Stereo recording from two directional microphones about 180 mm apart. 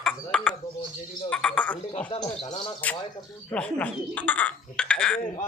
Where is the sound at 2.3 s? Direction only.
25° left (ahead or behind).